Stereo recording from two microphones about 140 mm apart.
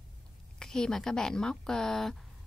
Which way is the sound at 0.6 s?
5° left (ahead or behind).